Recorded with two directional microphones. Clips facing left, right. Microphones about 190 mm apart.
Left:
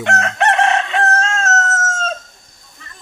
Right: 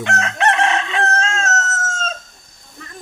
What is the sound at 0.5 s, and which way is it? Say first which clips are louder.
Crowing: left 2 dB; 45° left (ahead or behind).